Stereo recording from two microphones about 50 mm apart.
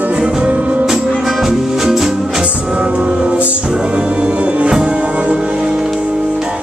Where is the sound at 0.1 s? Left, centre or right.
Centre.